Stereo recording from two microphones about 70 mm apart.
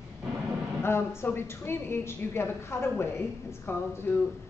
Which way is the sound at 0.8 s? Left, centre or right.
Left.